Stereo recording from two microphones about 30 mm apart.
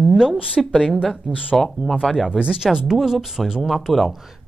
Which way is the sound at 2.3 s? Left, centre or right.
Right.